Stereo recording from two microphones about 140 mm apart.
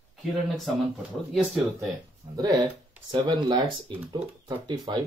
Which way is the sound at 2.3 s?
25° right (ahead or behind).